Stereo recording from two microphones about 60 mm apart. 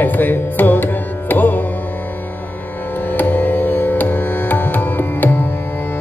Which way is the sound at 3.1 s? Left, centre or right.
Left.